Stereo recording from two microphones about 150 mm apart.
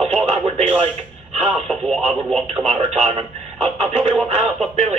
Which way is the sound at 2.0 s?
45° right (ahead or behind).